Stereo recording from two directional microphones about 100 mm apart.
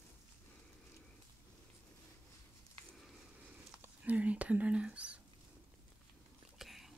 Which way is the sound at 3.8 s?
15° right (ahead or behind).